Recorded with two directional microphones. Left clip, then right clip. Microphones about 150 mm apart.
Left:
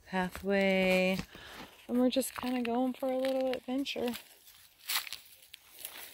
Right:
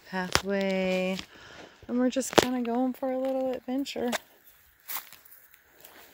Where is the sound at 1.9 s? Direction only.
10° right (ahead or behind).